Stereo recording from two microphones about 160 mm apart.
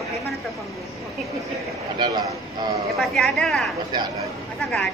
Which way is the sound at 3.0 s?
Centre (ahead or behind).